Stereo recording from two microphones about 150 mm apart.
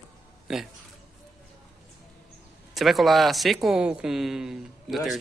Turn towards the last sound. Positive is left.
turn(degrees=0)  # may be behind; listen again after turning